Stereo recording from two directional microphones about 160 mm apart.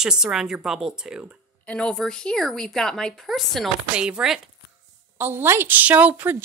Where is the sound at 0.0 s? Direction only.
5° right (ahead or behind).